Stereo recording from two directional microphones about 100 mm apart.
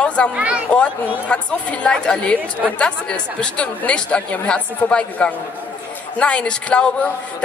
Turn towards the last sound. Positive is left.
turn(degrees=10)  # may be behind; listen again after turning